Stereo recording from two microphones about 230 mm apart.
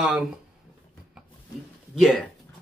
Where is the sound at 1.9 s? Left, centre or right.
Centre.